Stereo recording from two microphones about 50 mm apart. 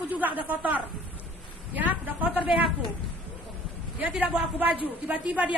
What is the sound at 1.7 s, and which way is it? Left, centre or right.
Speech, right.